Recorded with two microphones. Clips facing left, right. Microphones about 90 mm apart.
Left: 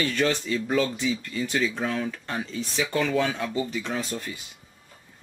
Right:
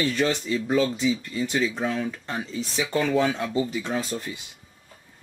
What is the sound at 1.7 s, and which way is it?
Speech, 5° right (ahead or behind).